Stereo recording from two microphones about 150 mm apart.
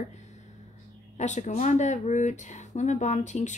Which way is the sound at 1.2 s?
50° left (ahead or behind).